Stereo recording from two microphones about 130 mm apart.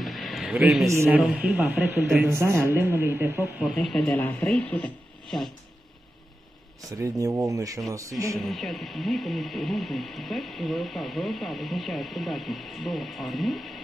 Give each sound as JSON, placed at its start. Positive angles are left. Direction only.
{"t": 0.0, "sound": "a sound", "side_deg": 0}
{"t": 0.8, "sound": "speech", "side_deg": -20}
{"t": 1.2, "sound": "speech", "side_deg": -5}
{"t": 3.7, "sound": "speech", "side_deg": 5}
{"t": 7.0, "sound": "speech", "side_deg": -25}
{"t": 8.4, "sound": "speech", "side_deg": 0}